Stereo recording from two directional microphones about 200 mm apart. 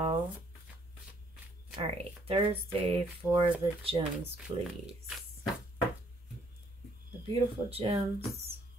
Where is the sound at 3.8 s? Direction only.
30° right (ahead or behind).